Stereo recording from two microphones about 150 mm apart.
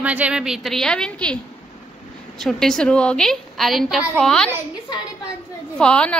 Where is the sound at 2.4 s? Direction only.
Centre (ahead or behind).